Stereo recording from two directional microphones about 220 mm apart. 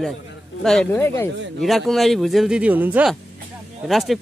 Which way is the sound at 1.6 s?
Centre (ahead or behind).